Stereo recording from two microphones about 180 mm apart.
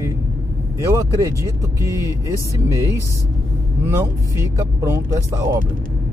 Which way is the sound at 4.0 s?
15° right (ahead or behind).